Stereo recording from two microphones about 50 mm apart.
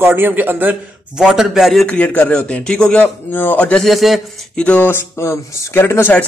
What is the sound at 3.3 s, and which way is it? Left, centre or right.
Speech, left.